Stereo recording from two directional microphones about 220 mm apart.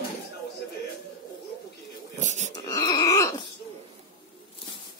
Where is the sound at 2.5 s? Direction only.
15° left (ahead or behind).